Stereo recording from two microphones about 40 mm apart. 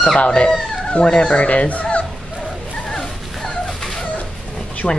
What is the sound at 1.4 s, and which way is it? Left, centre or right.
Speech, left.